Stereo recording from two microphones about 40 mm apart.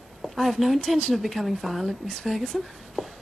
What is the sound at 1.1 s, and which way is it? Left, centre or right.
Speech, centre.